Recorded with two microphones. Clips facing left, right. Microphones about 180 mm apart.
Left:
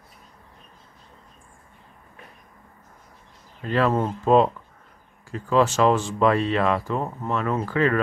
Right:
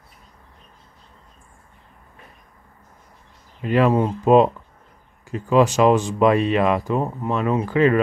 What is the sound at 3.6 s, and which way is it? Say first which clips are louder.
Speech: right 4 dB; 15° right (ahead or behind).